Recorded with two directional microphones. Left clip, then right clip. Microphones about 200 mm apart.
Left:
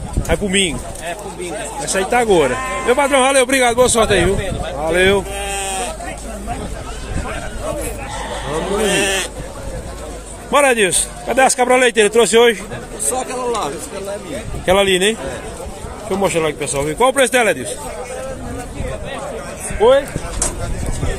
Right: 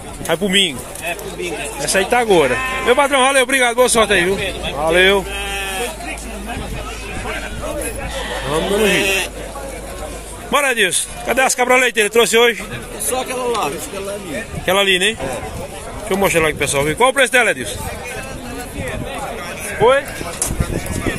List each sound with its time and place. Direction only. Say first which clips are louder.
0.3 s speech: right 2 dB; 5° right (ahead or behind)
1.9 s speech: right 1 dB; centre (ahead or behind)
4.7 s sheep: right 2 dB; centre (ahead or behind)
8.9 s speech: right 1 dB; 20° left (ahead or behind)
10.5 s a man's voice: left 2 dB; 5° left (ahead or behind)
14.7 s a man's voice: left 1 dB; 10° left (ahead or behind)
16.1 s speech: right 2 dB; centre (ahead or behind)
19.8 s speech: left 1 dB; 15° right (ahead or behind)